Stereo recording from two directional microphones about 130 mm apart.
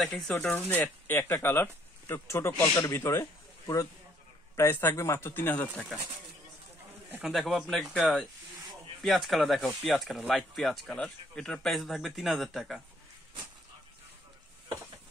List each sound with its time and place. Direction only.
0.0 s speech: 5° left (ahead or behind)
7.1 s speech: 5° right (ahead or behind)